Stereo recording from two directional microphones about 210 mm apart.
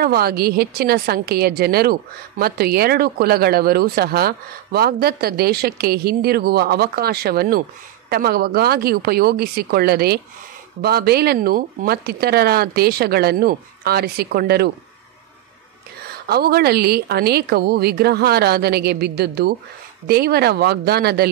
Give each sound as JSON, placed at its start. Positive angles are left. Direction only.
{"t": 0.0, "sound": "a woman's voice", "side_deg": -45}
{"t": 16.1, "sound": "a woman's voice", "side_deg": -50}